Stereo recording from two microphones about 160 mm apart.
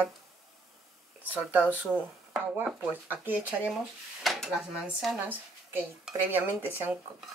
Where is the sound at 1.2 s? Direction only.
10° right (ahead or behind).